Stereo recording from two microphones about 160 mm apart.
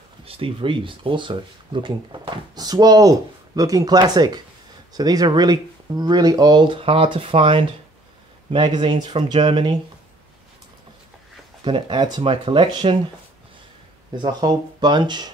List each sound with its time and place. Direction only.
0.2 s speech: 35° right (ahead or behind)
11.6 s speech: 25° right (ahead or behind)
14.1 s speech: 25° right (ahead or behind)